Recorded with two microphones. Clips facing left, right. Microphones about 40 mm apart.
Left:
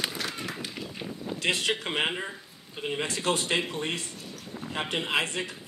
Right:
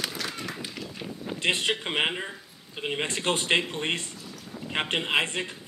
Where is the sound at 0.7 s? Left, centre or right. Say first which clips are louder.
Even; centre.